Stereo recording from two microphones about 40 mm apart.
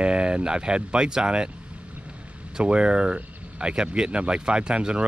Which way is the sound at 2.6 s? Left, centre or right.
Right.